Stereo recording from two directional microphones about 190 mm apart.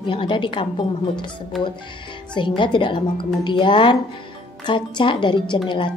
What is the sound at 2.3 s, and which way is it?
Speech, 25° left (ahead or behind).